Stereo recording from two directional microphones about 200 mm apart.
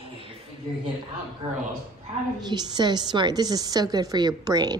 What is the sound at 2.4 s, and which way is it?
A woman's voice, 20° right (ahead or behind).